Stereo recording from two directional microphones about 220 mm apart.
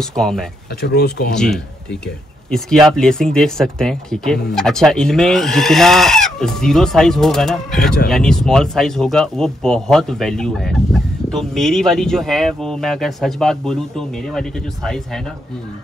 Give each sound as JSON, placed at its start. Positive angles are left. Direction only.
{"t": 0.0, "sound": "speech", "side_deg": 5}
{"t": 0.7, "sound": "speech", "side_deg": 45}
{"t": 1.3, "sound": "speech", "side_deg": 5}